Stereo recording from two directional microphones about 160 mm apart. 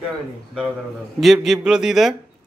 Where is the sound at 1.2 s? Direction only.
Centre (ahead or behind).